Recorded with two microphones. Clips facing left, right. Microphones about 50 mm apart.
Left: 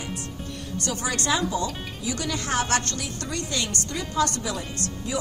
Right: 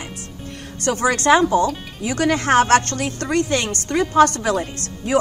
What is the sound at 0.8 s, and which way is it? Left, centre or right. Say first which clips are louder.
A woman's voice: right 11 dB; right.